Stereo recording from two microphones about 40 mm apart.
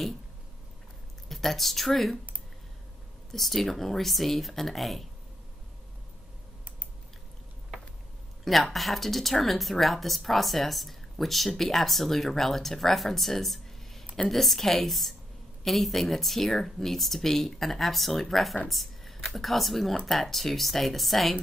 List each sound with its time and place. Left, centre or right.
1.3 s speech: centre
3.3 s speech: centre
8.5 s speech: centre